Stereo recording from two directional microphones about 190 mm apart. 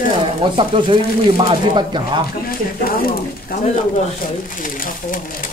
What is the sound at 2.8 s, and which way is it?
Speech, 50° left (ahead or behind).